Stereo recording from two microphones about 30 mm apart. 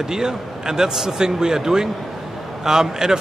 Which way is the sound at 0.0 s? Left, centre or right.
Centre.